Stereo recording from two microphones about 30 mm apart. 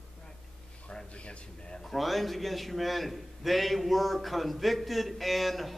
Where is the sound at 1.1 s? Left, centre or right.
Left.